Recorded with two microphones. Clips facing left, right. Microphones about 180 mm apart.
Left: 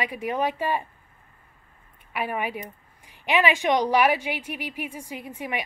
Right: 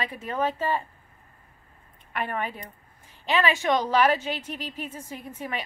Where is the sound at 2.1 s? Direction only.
10° left (ahead or behind).